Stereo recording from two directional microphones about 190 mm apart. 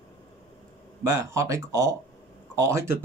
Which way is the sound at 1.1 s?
15° right (ahead or behind).